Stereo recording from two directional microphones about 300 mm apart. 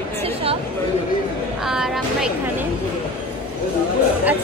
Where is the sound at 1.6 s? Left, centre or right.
Centre.